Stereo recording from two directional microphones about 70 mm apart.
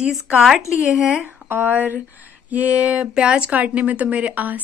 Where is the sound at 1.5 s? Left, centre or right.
Right.